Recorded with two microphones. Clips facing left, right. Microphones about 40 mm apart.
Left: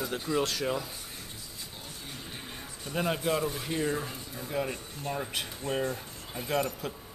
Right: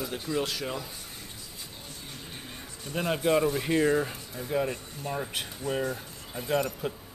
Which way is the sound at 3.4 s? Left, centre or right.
Centre.